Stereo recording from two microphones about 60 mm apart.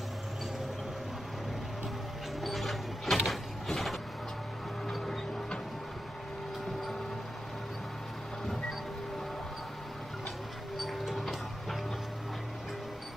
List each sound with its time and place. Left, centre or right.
2.4 s mechanisms: centre
4.8 s vehicle: centre
10.8 s a sound: centre